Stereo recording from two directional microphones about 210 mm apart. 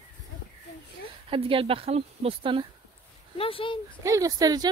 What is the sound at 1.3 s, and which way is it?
Speech, 25° right (ahead or behind).